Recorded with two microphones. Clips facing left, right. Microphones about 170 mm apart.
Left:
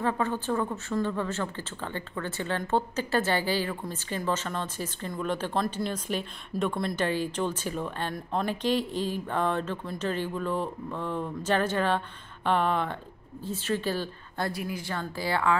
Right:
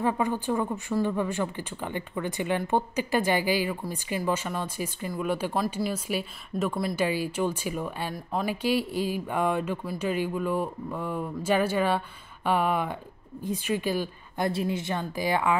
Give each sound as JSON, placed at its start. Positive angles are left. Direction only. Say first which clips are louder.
{"t": 0.0, "sound": "a woman's voice", "louder": "right 2 dB", "side_deg": -15}
{"t": 14.5, "sound": "speech", "louder": "right 5 dB", "side_deg": -25}